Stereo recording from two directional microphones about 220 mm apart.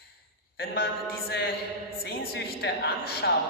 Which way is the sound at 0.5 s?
45° left (ahead or behind).